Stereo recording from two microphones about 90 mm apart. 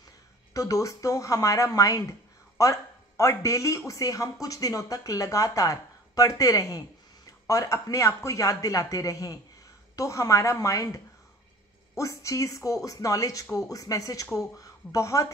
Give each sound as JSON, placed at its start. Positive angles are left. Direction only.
{"t": 0.5, "sound": "speech", "side_deg": 35}
{"t": 12.0, "sound": "a woman's voice", "side_deg": 35}